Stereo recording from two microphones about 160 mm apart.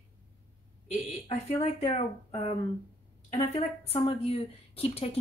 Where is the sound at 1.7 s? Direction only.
40° left (ahead or behind).